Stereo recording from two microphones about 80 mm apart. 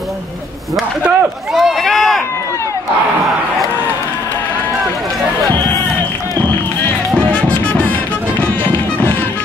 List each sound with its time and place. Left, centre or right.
1.0 s a sound: centre
7.2 s music: centre
8.4 s music: left